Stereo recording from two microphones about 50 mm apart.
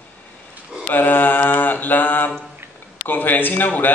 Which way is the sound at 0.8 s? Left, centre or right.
Left.